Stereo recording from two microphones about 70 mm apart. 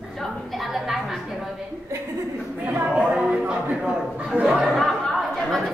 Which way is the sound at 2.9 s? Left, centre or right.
Centre.